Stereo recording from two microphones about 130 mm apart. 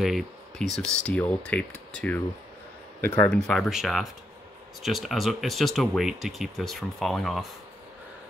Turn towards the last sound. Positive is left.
turn(degrees=0)  # may be behind; listen again after turning